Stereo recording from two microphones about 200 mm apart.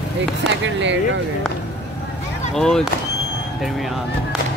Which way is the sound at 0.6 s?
65° right (ahead or behind).